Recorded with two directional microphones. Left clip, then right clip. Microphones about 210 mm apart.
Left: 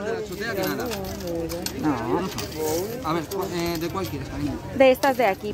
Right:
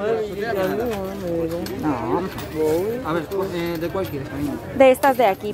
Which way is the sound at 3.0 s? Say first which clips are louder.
Right 3 dB; 30° left (ahead or behind).